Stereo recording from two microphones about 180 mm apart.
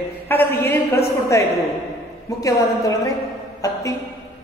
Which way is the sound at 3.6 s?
20° left (ahead or behind).